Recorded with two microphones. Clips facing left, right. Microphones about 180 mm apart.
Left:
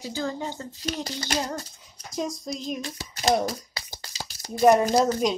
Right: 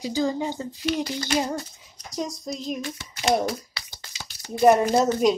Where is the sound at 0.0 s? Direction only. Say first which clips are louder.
Right 5 dB; 15° right (ahead or behind).